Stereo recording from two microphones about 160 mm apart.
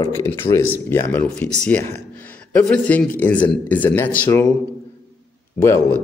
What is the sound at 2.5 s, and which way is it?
A man's voice, 10° left (ahead or behind).